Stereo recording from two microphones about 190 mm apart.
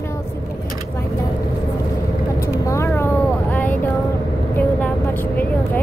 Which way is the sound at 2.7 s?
15° left (ahead or behind).